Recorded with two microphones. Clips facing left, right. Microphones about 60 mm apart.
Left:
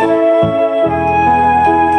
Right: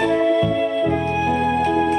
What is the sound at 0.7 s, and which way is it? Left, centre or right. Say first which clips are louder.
Music: left 8 dB; left.